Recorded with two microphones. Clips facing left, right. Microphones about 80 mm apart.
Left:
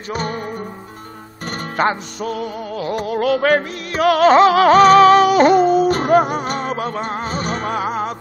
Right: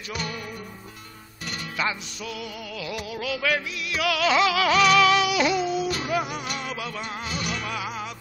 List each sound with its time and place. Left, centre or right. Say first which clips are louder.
0.1 s music: left 9 dB; left
1.8 s music: left 11 dB; left